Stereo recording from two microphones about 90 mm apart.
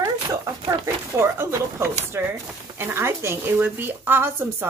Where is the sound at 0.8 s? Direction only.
30° right (ahead or behind).